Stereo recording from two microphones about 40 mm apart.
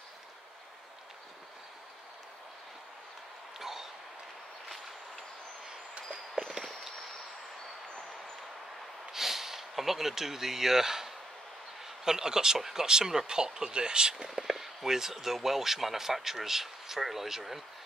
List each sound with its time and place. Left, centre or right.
3.5 s train: centre
9.1 s a sound: centre
11.8 s speech: centre
14.3 s speech: centre